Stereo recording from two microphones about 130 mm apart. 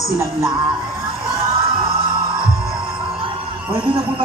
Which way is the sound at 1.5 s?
40° right (ahead or behind).